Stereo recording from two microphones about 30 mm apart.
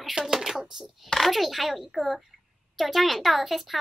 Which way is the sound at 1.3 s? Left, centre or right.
Centre.